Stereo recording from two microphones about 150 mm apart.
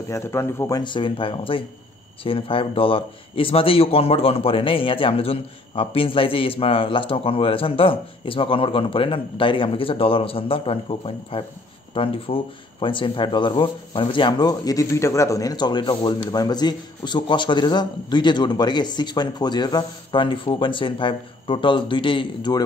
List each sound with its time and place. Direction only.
0.1 s speech: 15° left (ahead or behind); by 22.6 s 30° left (ahead or behind)